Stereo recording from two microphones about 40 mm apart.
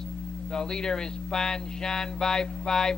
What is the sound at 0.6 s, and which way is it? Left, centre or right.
Speech, centre.